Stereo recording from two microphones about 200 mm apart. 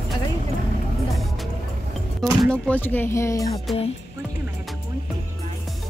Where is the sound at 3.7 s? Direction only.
Centre (ahead or behind).